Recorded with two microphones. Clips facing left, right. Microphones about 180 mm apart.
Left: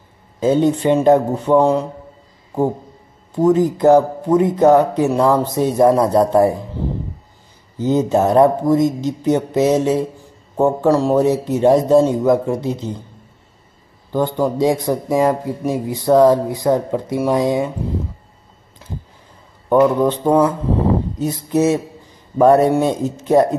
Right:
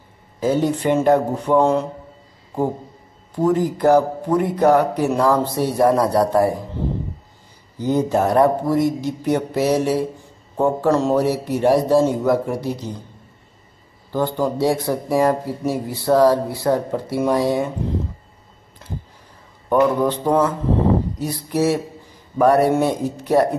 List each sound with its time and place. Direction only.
0.4 s speech: 20° left (ahead or behind)
3.3 s speech: 20° left (ahead or behind)
7.8 s speech: 20° left (ahead or behind)
14.1 s speech: 15° left (ahead or behind)
20.0 s speech: 20° left (ahead or behind)